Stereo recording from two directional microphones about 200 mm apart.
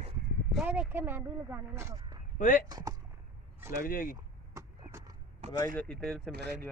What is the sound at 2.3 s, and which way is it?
Speech, 40° left (ahead or behind).